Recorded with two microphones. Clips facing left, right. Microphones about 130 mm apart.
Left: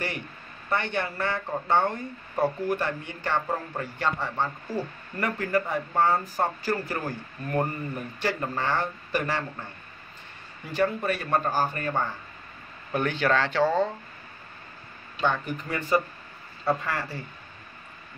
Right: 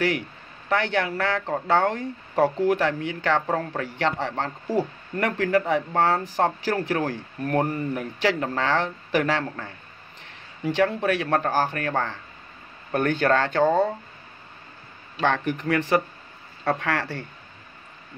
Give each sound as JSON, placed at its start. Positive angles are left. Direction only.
{"t": 0.7, "sound": "a man's voice", "side_deg": -90}
{"t": 12.9, "sound": "speech", "side_deg": -50}
{"t": 15.1, "sound": "speech", "side_deg": -85}